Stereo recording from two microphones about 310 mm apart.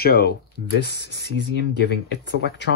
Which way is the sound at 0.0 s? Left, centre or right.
Left.